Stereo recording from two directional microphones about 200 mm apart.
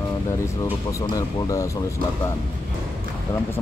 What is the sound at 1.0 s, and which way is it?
Speech, 15° left (ahead or behind).